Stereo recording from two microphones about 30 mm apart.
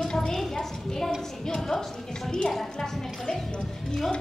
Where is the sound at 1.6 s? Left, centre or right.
Centre.